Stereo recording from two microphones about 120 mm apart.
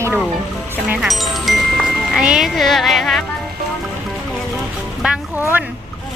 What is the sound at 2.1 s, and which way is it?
Speech, 5° right (ahead or behind).